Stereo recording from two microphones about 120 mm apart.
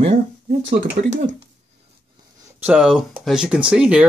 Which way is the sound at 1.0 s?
90° right.